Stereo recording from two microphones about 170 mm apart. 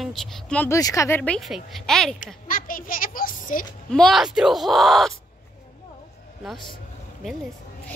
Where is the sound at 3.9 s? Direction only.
Centre (ahead or behind).